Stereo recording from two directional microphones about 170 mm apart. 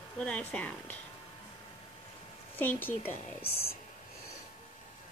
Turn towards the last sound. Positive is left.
turn(degrees=35)  # may be behind; listen again after turning